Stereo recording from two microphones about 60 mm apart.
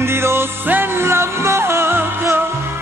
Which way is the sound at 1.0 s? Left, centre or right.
Right.